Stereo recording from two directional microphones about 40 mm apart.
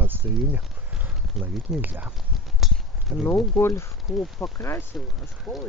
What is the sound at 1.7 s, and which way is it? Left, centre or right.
Speech, right.